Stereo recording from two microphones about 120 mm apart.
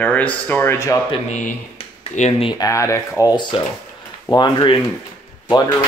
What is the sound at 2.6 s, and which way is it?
Speech, 25° left (ahead or behind).